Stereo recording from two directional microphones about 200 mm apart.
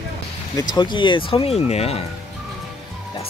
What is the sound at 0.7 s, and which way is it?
Speech, 25° left (ahead or behind).